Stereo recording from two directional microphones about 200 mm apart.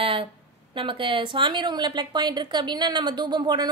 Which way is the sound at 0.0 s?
25° right (ahead or behind).